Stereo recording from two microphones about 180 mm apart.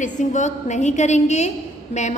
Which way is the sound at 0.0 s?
45° left (ahead or behind).